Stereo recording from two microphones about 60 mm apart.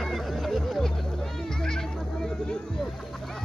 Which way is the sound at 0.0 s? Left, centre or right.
Centre.